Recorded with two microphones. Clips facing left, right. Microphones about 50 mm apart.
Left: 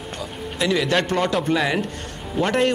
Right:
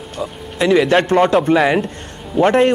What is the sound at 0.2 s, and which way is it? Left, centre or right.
Speech, right.